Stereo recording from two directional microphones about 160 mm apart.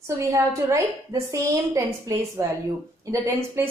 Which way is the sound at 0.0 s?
20° right (ahead or behind).